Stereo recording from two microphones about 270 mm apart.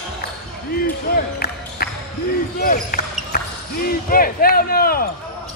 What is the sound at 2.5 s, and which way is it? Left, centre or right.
Speech, left.